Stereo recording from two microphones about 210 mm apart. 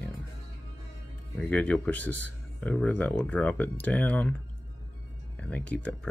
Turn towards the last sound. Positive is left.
turn(degrees=5)  # may be behind; listen again after turning